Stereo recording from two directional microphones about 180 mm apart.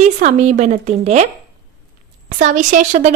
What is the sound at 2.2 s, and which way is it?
Speech, 45° right (ahead or behind).